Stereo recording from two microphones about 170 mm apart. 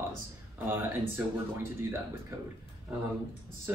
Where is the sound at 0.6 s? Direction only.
15° right (ahead or behind).